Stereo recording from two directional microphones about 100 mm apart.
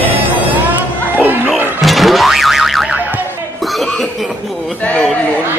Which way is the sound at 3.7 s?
Centre (ahead or behind).